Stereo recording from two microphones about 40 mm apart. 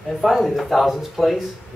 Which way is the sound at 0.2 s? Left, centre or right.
Centre.